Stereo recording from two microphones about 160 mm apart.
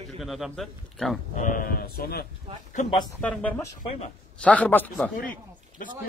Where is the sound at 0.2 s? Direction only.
Centre (ahead or behind).